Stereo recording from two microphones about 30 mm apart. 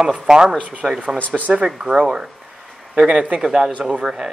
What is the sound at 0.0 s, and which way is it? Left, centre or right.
Speech, right.